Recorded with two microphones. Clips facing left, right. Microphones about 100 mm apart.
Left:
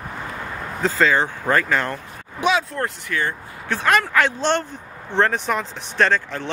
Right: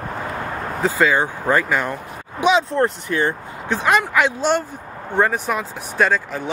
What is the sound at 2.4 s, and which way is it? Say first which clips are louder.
Speech: right 4 dB; 25° right (ahead or behind).